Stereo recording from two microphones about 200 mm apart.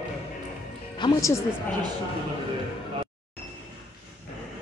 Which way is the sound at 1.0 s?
20° left (ahead or behind).